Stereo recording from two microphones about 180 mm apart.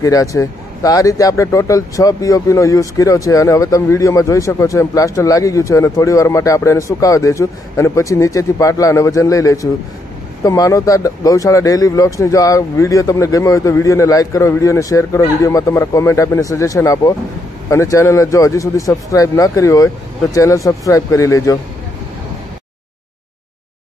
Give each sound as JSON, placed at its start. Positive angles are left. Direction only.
{"t": 0.0, "sound": "speech", "side_deg": 20}